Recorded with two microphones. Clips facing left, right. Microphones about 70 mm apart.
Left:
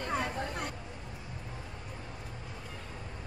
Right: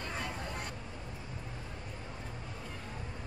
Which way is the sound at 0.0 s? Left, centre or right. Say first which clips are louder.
Left 6 dB; left.